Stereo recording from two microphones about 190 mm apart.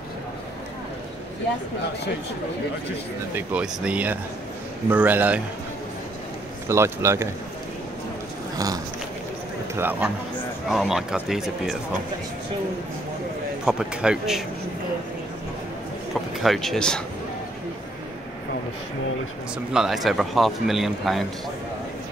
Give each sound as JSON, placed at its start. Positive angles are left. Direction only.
{"t": 3.3, "sound": "speech", "side_deg": -5}
{"t": 6.7, "sound": "speech", "side_deg": -15}
{"t": 8.5, "sound": "a man's voice", "side_deg": -20}
{"t": 13.7, "sound": "a man's voice", "side_deg": -5}
{"t": 16.4, "sound": "a man's voice", "side_deg": 0}
{"t": 19.7, "sound": "a man's voice", "side_deg": 0}